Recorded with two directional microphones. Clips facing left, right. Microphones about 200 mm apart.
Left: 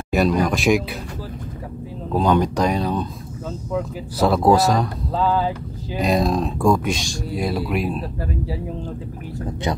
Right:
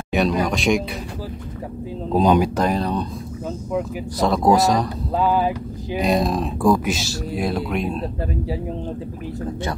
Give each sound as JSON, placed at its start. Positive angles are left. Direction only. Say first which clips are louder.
{"t": 0.1, "sound": "speech", "louder": "left 1 dB", "side_deg": 0}
{"t": 2.0, "sound": "speech", "louder": "right 2 dB", "side_deg": -15}
{"t": 2.5, "sound": "speech", "louder": "even", "side_deg": 0}
{"t": 4.2, "sound": "speech", "louder": "left 1 dB", "side_deg": 0}
{"t": 5.1, "sound": "speech", "louder": "right 1 dB", "side_deg": -15}
{"t": 5.9, "sound": "speech", "louder": "even", "side_deg": 0}